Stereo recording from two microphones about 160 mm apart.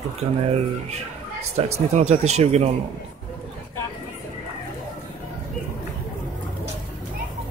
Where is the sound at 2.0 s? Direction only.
45° right (ahead or behind).